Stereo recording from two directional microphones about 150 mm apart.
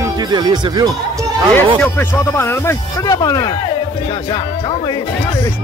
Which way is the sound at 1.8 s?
15° left (ahead or behind).